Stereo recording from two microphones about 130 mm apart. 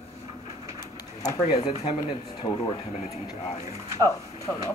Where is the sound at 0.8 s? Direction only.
30° left (ahead or behind).